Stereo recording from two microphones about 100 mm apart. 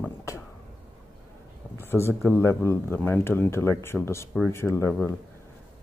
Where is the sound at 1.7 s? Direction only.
25° left (ahead or behind).